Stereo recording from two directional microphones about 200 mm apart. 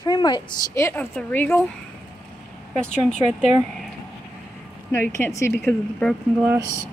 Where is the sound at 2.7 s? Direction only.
5° left (ahead or behind).